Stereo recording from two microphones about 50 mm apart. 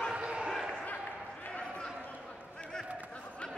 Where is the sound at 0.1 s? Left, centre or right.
Right.